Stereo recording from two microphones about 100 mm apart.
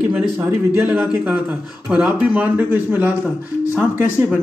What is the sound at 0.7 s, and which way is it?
Speech, 15° right (ahead or behind).